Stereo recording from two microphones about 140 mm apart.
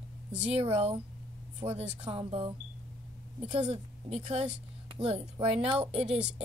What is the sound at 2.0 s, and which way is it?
Speech, 40° right (ahead or behind).